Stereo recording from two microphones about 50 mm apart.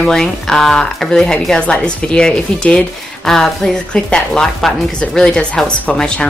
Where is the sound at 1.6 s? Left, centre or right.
Left.